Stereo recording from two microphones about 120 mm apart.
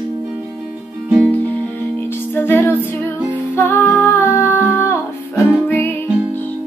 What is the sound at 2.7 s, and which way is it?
Music, 10° right (ahead or behind).